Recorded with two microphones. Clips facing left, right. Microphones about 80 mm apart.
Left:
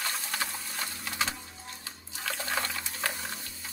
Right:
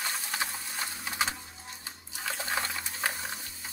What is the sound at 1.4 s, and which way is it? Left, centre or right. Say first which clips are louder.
Sewing machine: left 1 dB; centre.